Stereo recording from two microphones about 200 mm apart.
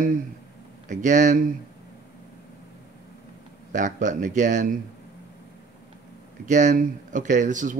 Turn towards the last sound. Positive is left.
turn(degrees=-40)  # may be behind; listen again after turning